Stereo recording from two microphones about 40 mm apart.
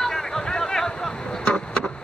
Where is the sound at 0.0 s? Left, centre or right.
Centre.